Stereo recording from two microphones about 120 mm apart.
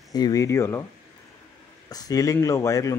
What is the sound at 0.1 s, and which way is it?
Speech, 30° left (ahead or behind).